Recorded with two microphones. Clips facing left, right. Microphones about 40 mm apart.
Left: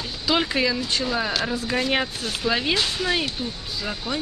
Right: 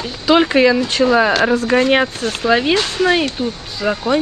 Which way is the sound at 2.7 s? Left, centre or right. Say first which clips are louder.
Right 8 dB; right.